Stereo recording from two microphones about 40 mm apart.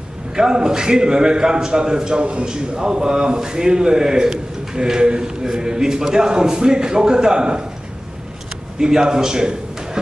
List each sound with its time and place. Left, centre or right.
0.3 s a man's voice: centre
8.7 s a man's voice: centre